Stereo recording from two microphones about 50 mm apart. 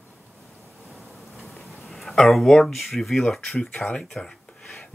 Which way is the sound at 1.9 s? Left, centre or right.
Centre.